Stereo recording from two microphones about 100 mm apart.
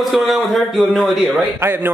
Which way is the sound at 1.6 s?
20° right (ahead or behind).